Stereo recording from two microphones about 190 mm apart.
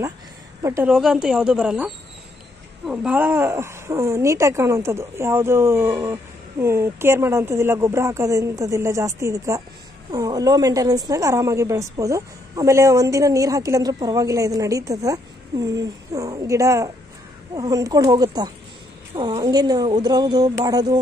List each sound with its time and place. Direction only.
0.6 s a woman's voice: 15° right (ahead or behind)
0.9 s speech: 5° right (ahead or behind)
2.9 s a woman's voice: 5° right (ahead or behind)